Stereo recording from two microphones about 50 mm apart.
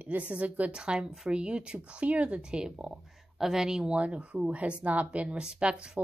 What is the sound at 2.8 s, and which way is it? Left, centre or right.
A woman's voice, centre.